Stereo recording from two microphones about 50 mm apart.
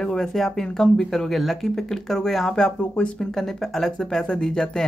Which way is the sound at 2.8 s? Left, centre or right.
Left.